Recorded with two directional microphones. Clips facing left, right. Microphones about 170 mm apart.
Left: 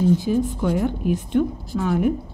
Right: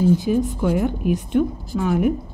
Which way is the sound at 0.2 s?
20° right (ahead or behind).